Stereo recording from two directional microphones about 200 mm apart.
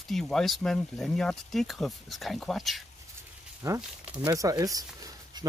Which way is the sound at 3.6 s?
15° right (ahead or behind).